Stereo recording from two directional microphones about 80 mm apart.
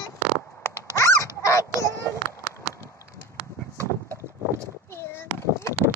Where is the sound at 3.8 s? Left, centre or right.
Right.